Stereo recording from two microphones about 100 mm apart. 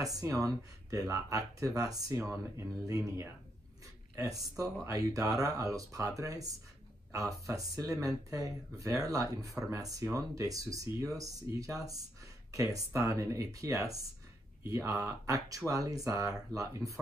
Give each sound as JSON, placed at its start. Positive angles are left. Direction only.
{"t": 0.0, "sound": "speech", "side_deg": -35}